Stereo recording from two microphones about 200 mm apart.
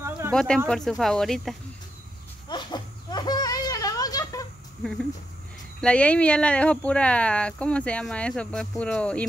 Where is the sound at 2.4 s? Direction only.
20° left (ahead or behind).